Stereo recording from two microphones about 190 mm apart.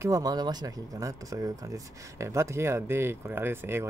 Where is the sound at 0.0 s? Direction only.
20° right (ahead or behind).